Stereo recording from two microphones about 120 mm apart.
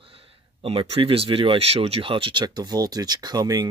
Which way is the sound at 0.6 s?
50° right (ahead or behind).